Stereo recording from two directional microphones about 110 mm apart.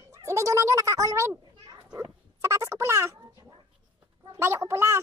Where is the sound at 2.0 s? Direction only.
25° right (ahead or behind).